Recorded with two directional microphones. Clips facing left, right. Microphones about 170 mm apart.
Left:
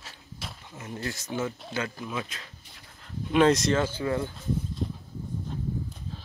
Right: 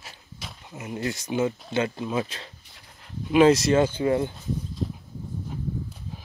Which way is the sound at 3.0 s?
5° right (ahead or behind).